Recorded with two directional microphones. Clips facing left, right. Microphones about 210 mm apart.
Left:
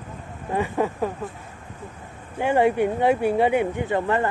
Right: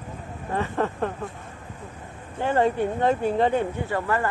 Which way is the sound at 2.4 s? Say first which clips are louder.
Left 3 dB; 15° left (ahead or behind).